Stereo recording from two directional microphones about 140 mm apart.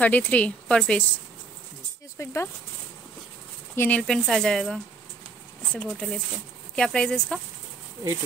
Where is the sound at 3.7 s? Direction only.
15° left (ahead or behind).